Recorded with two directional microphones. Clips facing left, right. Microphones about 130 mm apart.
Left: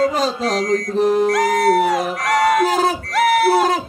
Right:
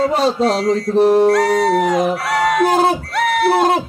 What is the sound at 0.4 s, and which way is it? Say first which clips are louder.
Mantra: right 4 dB; 5° right (ahead or behind).